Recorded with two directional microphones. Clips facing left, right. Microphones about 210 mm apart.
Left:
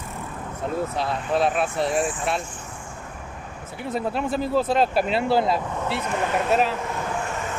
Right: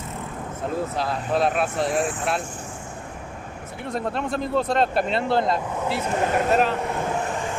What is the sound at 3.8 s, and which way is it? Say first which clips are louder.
Speech: left 1 dB; 5° left (ahead or behind).